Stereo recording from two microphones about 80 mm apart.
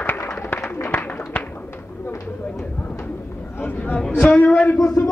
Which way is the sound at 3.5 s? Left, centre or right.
Left.